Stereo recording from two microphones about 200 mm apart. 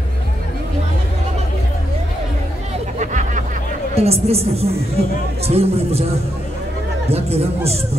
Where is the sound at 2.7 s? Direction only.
35° right (ahead or behind).